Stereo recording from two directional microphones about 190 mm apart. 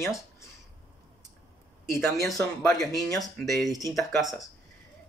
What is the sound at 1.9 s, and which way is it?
Speech, 15° left (ahead or behind).